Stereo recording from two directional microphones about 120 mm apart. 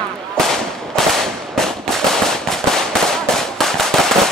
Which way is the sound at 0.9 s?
5° left (ahead or behind).